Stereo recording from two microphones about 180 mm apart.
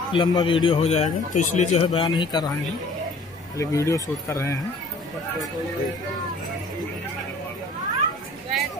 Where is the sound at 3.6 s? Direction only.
15° left (ahead or behind).